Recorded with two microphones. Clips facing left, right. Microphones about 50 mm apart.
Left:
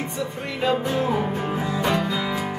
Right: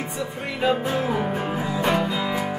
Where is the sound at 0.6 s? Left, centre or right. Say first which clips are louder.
Even; centre.